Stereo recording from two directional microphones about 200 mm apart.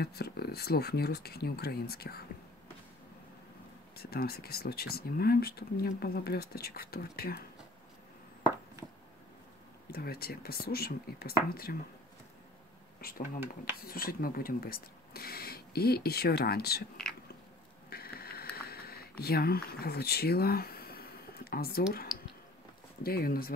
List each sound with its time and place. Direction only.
0.0 s speech: 50° left (ahead or behind)
3.9 s speech: 50° left (ahead or behind)
9.8 s speech: 50° left (ahead or behind)
13.0 s speech: 50° left (ahead or behind)
17.8 s a sound: 50° left (ahead or behind)
18.7 s speech: 50° left (ahead or behind)
23.0 s speech: 50° left (ahead or behind)